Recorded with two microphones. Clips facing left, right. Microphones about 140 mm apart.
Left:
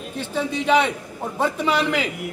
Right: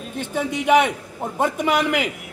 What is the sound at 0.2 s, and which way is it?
A man's voice, 15° right (ahead or behind).